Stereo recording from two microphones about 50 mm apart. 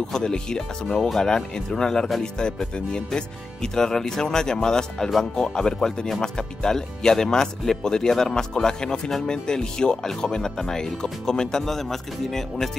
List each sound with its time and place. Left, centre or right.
0.1 s speech: centre